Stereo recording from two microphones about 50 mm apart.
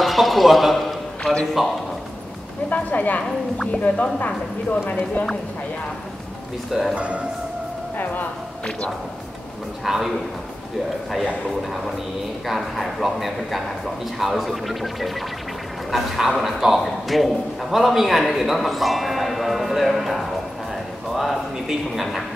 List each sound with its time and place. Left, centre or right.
0.0 s a sound: centre
1.6 s a man's voice: centre
2.7 s a woman's voice: left
6.7 s a man's voice: centre
7.0 s speech: right
8.0 s speech: left
9.8 s a man's voice: centre
12.4 s a man's voice: centre